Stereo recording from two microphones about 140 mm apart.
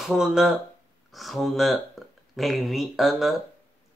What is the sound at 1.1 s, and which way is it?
Speech, centre (ahead or behind).